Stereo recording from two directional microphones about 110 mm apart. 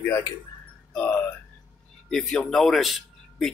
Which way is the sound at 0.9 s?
15° left (ahead or behind).